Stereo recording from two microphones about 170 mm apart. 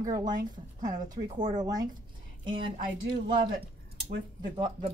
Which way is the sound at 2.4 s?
30° right (ahead or behind).